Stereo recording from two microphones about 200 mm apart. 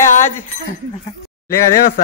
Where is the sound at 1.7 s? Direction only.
45° left (ahead or behind).